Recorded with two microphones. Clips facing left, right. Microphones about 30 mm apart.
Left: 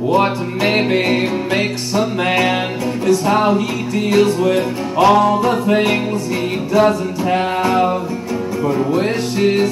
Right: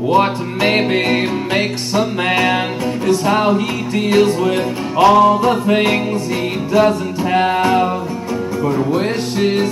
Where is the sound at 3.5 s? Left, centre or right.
Right.